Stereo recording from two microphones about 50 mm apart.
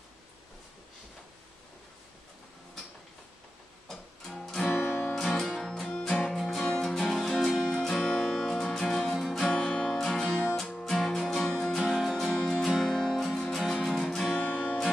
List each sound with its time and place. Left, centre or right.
3.9 s music: centre
4.7 s music: left
5.1 s music: centre
7.7 s music: centre
11.8 s music: centre
12.4 s music: centre